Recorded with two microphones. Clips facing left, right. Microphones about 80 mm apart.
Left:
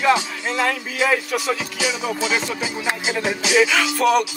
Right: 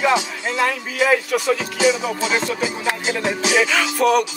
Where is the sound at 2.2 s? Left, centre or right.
Right.